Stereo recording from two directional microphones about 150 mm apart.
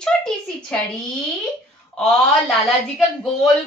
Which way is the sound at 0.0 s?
5° left (ahead or behind).